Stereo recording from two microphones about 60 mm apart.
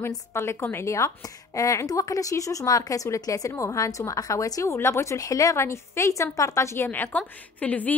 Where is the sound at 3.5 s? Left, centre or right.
Left.